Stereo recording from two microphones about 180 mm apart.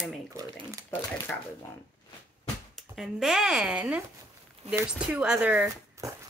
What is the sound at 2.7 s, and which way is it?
Speech, centre (ahead or behind).